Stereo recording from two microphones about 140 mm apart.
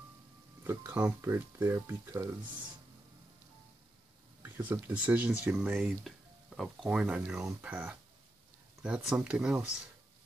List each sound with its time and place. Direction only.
0.7 s speech: 15° right (ahead or behind)
4.6 s speech: 15° right (ahead or behind)